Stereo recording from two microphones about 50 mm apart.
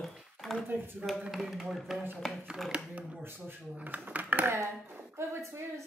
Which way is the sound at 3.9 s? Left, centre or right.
Right.